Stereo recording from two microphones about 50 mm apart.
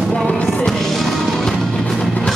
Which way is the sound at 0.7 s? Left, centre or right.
Centre.